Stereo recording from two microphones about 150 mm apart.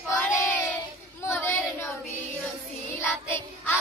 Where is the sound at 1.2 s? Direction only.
15° left (ahead or behind).